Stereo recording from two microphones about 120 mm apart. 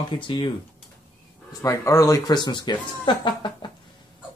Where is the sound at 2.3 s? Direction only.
40° left (ahead or behind).